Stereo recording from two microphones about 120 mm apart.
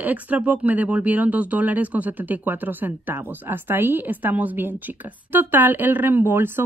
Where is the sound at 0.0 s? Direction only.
15° right (ahead or behind).